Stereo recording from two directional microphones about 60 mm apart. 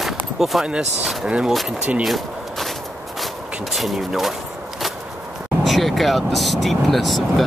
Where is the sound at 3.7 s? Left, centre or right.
Centre.